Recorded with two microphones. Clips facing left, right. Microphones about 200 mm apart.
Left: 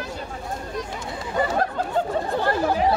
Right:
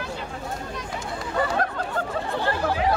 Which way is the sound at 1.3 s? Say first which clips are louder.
Left 2 dB; 20° left (ahead or behind).